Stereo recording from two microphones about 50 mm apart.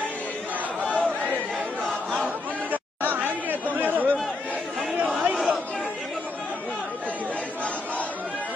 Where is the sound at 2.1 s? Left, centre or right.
Right.